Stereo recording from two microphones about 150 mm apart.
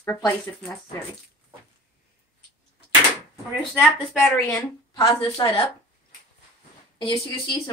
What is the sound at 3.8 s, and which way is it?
Speech, centre (ahead or behind).